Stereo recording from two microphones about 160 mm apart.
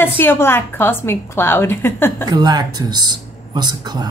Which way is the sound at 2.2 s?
25° right (ahead or behind).